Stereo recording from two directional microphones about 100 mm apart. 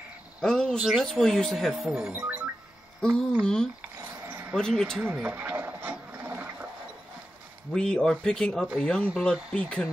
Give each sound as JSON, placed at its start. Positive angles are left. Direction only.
{"t": 0.4, "sound": "speech", "side_deg": 10}
{"t": 0.7, "sound": "speech", "side_deg": -5}
{"t": 3.0, "sound": "speech", "side_deg": 5}
{"t": 4.3, "sound": "a sound", "side_deg": -20}
{"t": 4.6, "sound": "speech", "side_deg": 5}
{"t": 5.1, "sound": "a sound", "side_deg": -20}
{"t": 7.7, "sound": "speech", "side_deg": 5}